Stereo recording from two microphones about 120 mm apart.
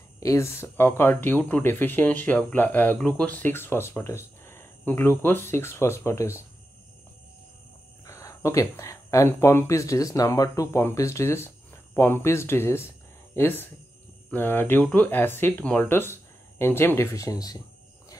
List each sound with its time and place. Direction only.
0.2 s speech: 25° left (ahead or behind)
8.0 s speech: 25° left (ahead or behind)